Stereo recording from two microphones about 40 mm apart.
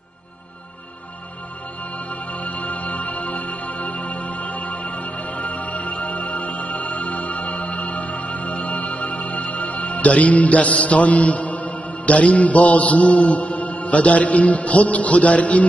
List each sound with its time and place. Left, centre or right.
2.0 s music: left